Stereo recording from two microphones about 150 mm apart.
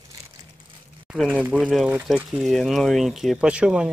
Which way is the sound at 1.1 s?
5° left (ahead or behind).